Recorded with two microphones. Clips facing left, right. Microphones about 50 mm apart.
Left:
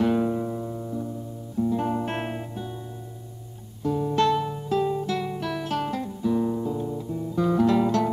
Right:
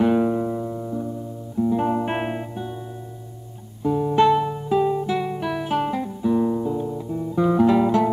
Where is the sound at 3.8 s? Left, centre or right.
Centre.